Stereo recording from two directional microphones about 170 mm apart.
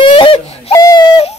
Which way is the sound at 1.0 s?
35° left (ahead or behind).